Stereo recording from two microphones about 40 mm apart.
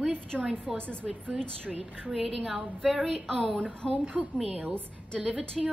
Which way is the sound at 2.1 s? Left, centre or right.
Centre.